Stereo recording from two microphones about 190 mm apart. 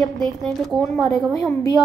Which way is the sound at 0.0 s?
Centre (ahead or behind).